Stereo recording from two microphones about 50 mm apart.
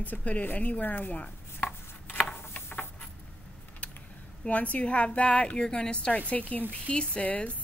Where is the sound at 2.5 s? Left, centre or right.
Left.